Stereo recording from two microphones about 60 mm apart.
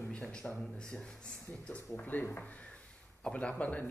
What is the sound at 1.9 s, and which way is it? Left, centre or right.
Speech, left.